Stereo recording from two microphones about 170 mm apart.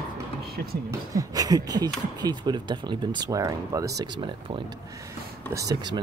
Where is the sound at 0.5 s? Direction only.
60° right (ahead or behind).